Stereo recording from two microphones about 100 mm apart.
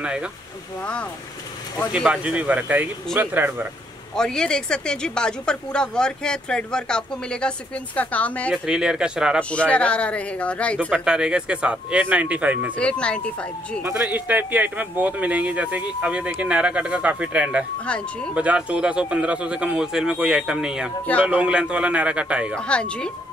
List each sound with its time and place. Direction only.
0.0 s a man's voice: 10° right (ahead or behind)
1.9 s a man's voice: 10° right (ahead or behind)
4.1 s speech: 5° left (ahead or behind)
8.6 s a man's voice: 5° right (ahead or behind)
9.4 s speech: 10° left (ahead or behind)
10.8 s a man's voice: 10° right (ahead or behind)
12.7 s speech: 10° left (ahead or behind)
13.9 s a man's voice: 15° right (ahead or behind)
17.8 s speech: 10° left (ahead or behind)
18.3 s a man's voice: 10° right (ahead or behind)
22.6 s speech: 10° left (ahead or behind)